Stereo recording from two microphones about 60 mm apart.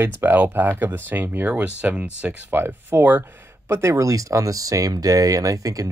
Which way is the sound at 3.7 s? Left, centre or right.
Right.